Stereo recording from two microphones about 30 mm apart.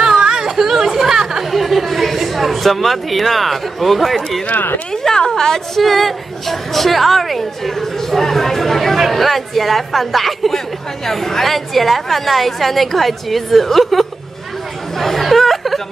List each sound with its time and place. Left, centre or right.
0.2 s chatter: centre
1.5 s speech: centre
4.9 s a woman's voice: centre
5.8 s a woman's voice: centre
15.0 s chatter: centre